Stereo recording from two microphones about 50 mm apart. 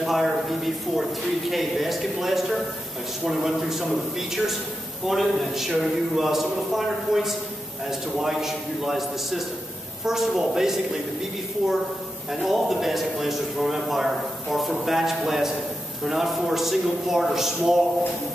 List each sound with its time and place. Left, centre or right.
0.0 s a man's voice: centre
5.0 s a man's voice: centre
12.3 s a man's voice: centre